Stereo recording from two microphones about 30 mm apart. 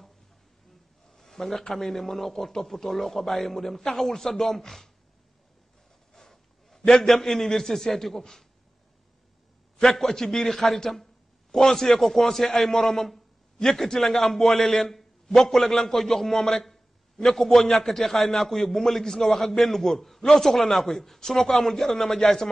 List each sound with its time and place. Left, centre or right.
1.1 s a sound: centre
1.7 s a man's voice: centre
6.1 s a sound: centre
7.1 s a man's voice: centre
10.0 s a man's voice: centre
14.0 s a man's voice: centre